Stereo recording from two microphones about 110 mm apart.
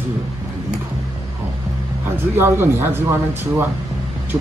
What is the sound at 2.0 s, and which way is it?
Speech, 20° right (ahead or behind).